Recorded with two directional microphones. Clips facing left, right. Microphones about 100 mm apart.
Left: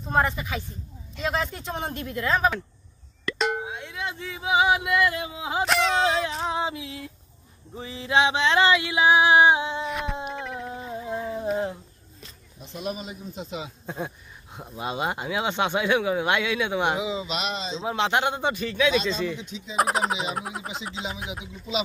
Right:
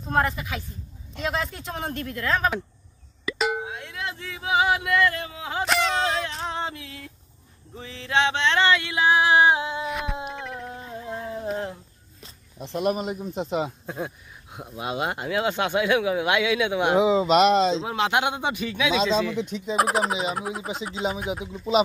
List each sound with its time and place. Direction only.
0.0 s speech: centre (ahead or behind)
5.7 s a sound: centre (ahead or behind)
12.5 s speech: 70° right (ahead or behind); by 13.7 s 55° right (ahead or behind)
13.8 s speech: 5° right (ahead or behind)
17.0 s speech: 55° right (ahead or behind); by 17.8 s 75° right (ahead or behind)
17.8 s a man's voice: 5° right (ahead or behind)
19.3 s speech: 60° right (ahead or behind)
19.7 s speech: centre (ahead or behind)